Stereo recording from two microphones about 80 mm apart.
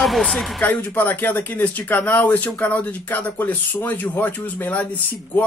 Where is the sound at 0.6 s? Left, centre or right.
Centre.